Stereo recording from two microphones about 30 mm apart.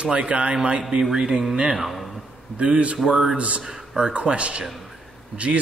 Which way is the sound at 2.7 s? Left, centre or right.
Right.